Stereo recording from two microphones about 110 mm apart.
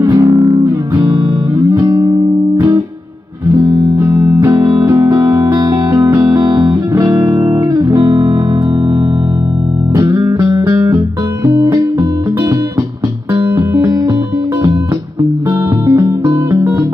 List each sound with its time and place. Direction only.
0.7 s music: 30° right (ahead or behind)
2.0 s music: 45° right (ahead or behind)
3.5 s music: 30° right (ahead or behind)
9.9 s music: 30° right (ahead or behind)
13.3 s music: 35° right (ahead or behind)
15.9 s music: 30° right (ahead or behind)